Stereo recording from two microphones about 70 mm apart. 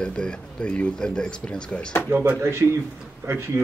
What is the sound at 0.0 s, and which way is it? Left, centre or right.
Speech, centre.